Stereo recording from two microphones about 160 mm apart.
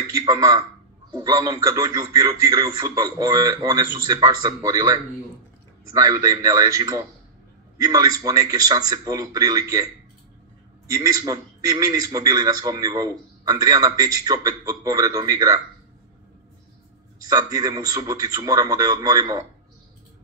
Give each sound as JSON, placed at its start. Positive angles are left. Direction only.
{"t": 0.2, "sound": "a man's voice", "side_deg": -25}
{"t": 5.9, "sound": "a man's voice", "side_deg": -20}
{"t": 10.9, "sound": "a man's voice", "side_deg": -20}
{"t": 17.2, "sound": "a man's voice", "side_deg": -25}